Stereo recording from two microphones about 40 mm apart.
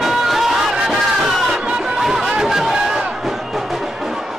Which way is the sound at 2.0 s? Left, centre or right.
Centre.